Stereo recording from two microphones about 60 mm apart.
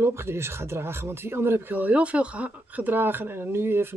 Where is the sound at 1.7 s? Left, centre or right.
Right.